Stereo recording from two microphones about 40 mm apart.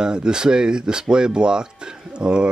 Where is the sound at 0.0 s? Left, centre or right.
Right.